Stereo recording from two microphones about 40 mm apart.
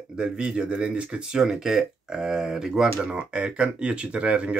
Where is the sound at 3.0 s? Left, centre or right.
Right.